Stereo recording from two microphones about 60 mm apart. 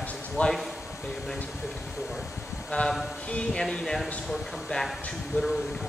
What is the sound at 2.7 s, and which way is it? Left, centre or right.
Speech, centre.